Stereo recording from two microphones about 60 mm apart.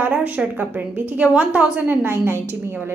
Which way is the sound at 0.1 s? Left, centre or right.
Centre.